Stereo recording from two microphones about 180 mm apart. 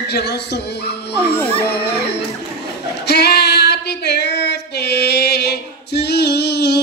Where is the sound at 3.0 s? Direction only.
65° left (ahead or behind).